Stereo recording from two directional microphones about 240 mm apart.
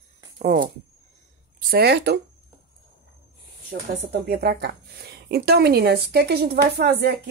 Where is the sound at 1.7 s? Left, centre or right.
Right.